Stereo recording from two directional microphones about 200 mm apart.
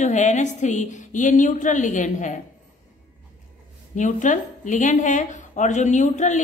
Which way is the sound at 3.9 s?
40° left (ahead or behind).